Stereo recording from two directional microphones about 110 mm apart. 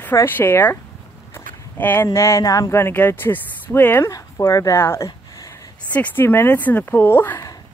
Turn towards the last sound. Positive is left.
turn(degrees=20)  # may be behind; listen again after turning